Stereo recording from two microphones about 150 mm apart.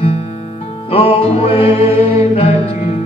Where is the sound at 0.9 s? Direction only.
40° left (ahead or behind).